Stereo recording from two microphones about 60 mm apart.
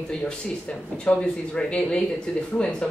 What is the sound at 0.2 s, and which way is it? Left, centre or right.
Speech, centre.